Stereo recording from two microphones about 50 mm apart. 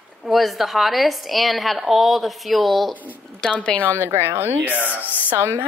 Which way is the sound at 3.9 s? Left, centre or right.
Right.